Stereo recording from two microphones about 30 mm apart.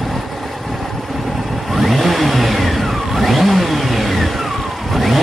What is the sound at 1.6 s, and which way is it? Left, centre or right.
Vehicle, centre.